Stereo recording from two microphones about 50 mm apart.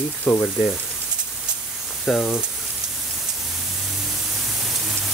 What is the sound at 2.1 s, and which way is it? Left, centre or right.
Speech, centre.